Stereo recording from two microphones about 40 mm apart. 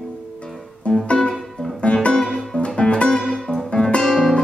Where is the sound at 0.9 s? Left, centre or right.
Left.